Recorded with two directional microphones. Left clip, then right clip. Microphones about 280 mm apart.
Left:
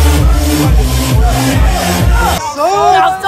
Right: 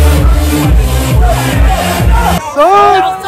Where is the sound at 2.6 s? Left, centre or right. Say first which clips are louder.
Right 2 dB; centre.